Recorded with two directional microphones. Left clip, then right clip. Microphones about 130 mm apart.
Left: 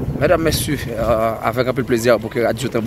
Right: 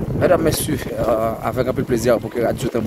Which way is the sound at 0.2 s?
30° right (ahead or behind).